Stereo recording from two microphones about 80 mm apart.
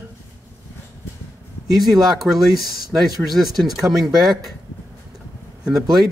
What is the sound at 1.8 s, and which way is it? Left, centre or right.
Speech, centre.